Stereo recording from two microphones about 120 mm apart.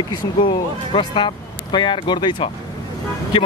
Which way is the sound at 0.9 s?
45° left (ahead or behind).